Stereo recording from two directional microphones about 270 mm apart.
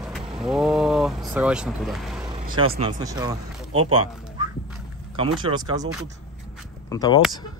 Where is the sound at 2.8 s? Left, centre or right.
Centre.